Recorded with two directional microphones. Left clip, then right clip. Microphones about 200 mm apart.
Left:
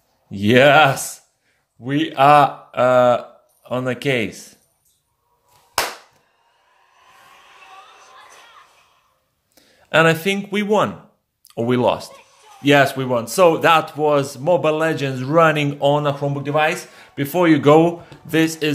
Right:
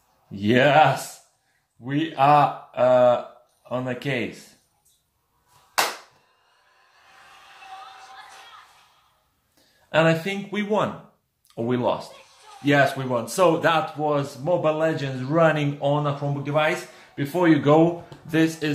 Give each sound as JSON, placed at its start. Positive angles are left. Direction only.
{"t": 0.3, "sound": "speech", "side_deg": 55}
{"t": 7.5, "sound": "a sound", "side_deg": 0}
{"t": 9.8, "sound": "speech", "side_deg": 50}